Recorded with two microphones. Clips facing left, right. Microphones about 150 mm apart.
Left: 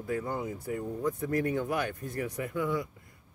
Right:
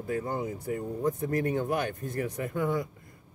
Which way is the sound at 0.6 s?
45° right (ahead or behind).